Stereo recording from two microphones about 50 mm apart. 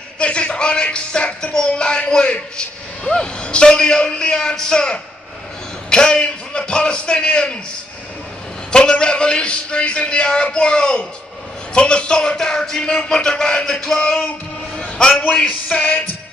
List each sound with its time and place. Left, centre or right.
0.2 s speech: left
5.9 s music: centre
8.7 s speech: centre
11.7 s music: left
15.7 s music: left